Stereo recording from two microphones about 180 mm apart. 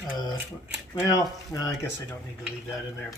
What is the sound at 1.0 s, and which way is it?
Speech, 20° left (ahead or behind).